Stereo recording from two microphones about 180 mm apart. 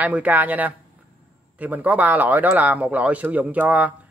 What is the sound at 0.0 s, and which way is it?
A man's voice, 10° right (ahead or behind).